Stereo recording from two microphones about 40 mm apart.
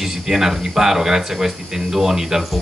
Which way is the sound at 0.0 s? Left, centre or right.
Centre.